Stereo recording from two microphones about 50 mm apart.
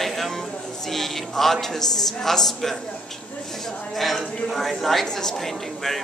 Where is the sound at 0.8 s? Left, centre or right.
Centre.